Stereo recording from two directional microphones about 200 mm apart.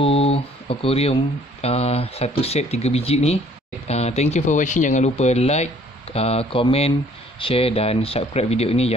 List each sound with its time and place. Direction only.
0.0 s speech: 30° left (ahead or behind)